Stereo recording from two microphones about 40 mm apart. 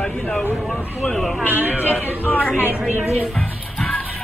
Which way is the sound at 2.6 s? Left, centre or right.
Right.